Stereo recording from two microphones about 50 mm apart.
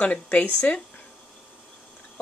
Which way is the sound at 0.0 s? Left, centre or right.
Left.